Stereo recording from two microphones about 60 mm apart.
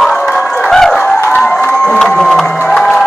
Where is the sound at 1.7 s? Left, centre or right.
Centre.